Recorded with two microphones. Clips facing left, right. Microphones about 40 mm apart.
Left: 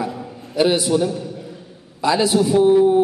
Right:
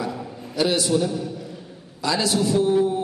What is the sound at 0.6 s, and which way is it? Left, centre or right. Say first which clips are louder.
A man's voice: left 4 dB; centre.